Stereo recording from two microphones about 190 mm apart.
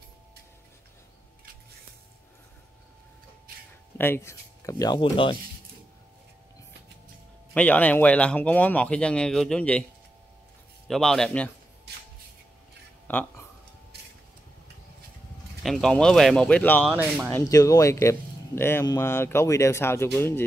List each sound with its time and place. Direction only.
4.0 s speech: 15° left (ahead or behind)
7.5 s speech: 10° left (ahead or behind)
10.9 s speech: centre (ahead or behind)
13.1 s speech: 10° left (ahead or behind)
15.6 s speech: centre (ahead or behind)
16.9 s speech: 10° right (ahead or behind)
17.3 s speech: 15° left (ahead or behind)